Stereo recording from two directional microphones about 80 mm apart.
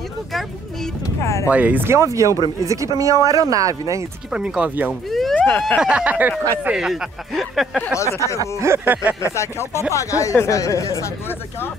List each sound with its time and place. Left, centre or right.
1.2 s speech: left
1.5 s speech: right
2.0 s speech: right
4.3 s speech: centre
5.3 s vehicle: centre
5.8 s speech: centre
6.7 s speech: centre
7.9 s speech: left
8.4 s speech: right
8.8 s speech: right
9.2 s speech: left